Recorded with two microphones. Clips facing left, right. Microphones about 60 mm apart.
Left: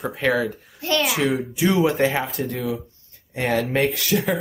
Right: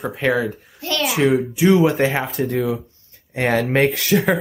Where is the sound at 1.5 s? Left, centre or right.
Centre.